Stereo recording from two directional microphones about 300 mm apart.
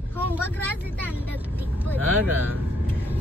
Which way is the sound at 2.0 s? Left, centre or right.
Right.